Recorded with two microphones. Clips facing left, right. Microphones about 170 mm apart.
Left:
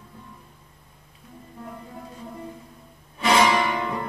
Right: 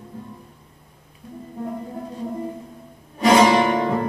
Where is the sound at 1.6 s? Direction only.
35° right (ahead or behind).